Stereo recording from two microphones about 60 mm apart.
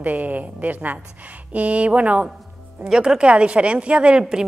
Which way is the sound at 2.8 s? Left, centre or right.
Centre.